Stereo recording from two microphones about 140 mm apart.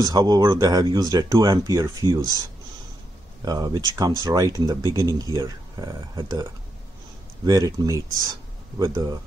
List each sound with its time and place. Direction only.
0.0 s speech: 30° right (ahead or behind)
3.4 s speech: 25° right (ahead or behind)
7.4 s speech: 25° right (ahead or behind)